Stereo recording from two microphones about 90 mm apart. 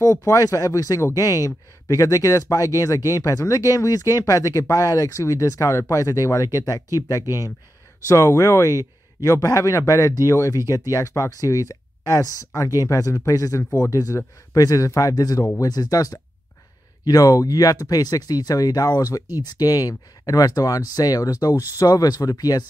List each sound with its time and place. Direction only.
0.0 s speech: 35° left (ahead or behind)